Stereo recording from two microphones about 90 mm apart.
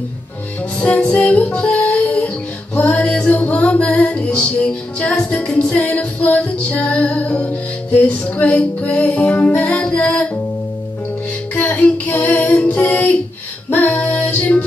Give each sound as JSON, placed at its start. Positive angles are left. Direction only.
{"t": 0.7, "sound": "music", "side_deg": 15}
{"t": 11.5, "sound": "child singing", "side_deg": 15}
{"t": 13.7, "sound": "female singing", "side_deg": 20}